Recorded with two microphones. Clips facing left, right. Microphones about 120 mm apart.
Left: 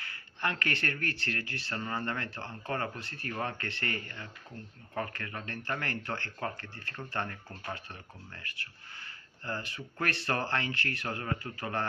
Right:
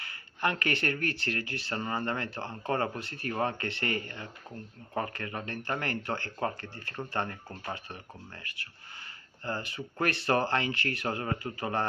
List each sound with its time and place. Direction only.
0.0 s a sound: 15° right (ahead or behind)
0.9 s speech: 15° right (ahead or behind)
9.8 s speech: 20° right (ahead or behind)